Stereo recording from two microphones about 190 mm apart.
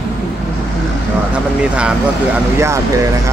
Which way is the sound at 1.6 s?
5° right (ahead or behind).